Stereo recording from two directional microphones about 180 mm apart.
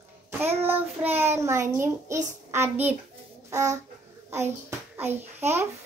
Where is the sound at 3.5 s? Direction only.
15° right (ahead or behind).